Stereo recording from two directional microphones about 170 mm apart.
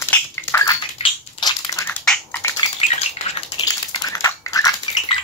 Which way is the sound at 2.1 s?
10° left (ahead or behind).